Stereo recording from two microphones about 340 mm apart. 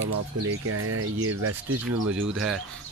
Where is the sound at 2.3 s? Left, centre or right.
Centre.